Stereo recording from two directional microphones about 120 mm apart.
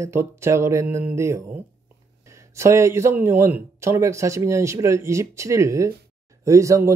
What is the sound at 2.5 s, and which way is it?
Speech, 25° right (ahead or behind).